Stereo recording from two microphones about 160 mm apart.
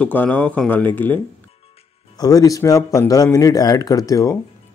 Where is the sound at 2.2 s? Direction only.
20° left (ahead or behind).